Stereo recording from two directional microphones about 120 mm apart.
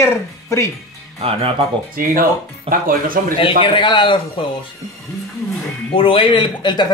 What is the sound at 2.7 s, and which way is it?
Speech, 55° right (ahead or behind).